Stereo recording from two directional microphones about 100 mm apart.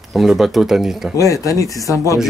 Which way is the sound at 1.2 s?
35° left (ahead or behind).